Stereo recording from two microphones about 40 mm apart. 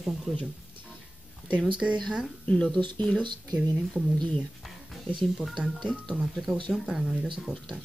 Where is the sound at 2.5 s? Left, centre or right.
Left.